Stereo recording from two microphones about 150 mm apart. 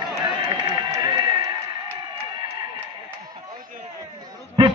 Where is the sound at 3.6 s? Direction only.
65° right (ahead or behind).